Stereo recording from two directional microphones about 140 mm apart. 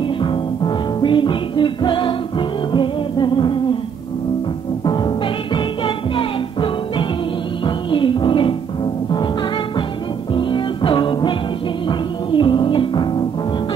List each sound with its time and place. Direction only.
0.2 s music: 35° left (ahead or behind)
4.8 s music: 35° left (ahead or behind)
10.3 s music: 35° left (ahead or behind)